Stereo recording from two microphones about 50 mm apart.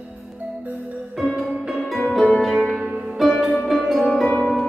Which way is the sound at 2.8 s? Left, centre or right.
Right.